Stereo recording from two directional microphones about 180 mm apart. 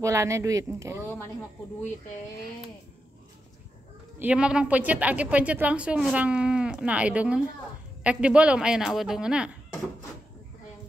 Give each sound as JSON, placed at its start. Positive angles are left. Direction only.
{"t": 0.0, "sound": "a woman's voice", "side_deg": -15}
{"t": 4.2, "sound": "a woman's voice", "side_deg": -5}